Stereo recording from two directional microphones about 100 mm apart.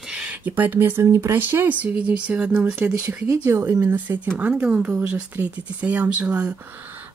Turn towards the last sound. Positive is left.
turn(degrees=-10)  # may be behind; listen again after turning